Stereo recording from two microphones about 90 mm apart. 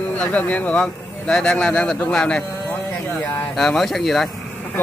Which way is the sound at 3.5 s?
5° left (ahead or behind).